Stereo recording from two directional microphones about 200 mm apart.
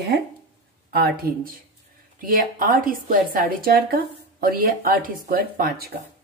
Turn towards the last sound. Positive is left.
turn(degrees=-45)  # may be behind; listen again after turning